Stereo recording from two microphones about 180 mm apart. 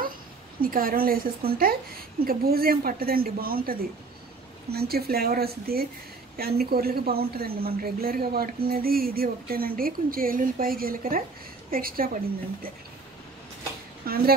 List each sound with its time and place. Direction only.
0.6 s a woman's voice: 55° right (ahead or behind)
14.0 s a woman's voice: 55° right (ahead or behind)